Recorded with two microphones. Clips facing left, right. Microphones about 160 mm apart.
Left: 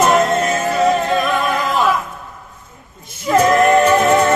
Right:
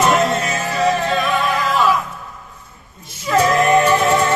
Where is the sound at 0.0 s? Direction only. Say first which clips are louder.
Left 2 dB; 50° left (ahead or behind).